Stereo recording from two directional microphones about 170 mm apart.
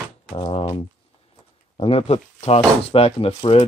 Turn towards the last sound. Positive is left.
turn(degrees=35)  # may be behind; listen again after turning